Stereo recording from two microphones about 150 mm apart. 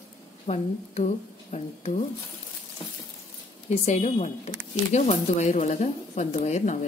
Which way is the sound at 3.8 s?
45° left (ahead or behind).